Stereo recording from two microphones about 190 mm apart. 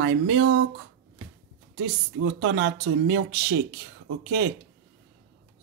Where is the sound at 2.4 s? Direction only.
70° right (ahead or behind).